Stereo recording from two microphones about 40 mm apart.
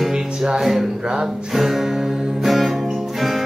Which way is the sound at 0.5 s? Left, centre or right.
Centre.